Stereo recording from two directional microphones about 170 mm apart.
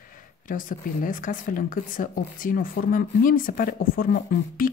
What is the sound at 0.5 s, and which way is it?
Speech, 50° left (ahead or behind).